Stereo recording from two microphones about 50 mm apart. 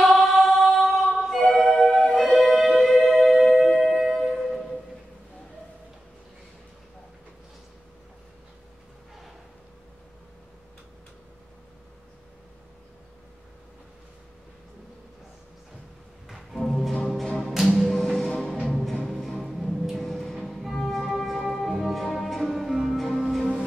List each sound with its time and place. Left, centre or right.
0.0 s a capella: centre
1.2 s music: centre
16.5 s music: centre
17.5 s music: centre
17.9 s music: centre